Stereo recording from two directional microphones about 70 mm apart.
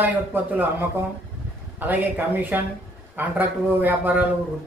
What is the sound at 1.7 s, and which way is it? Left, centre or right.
Speech, right.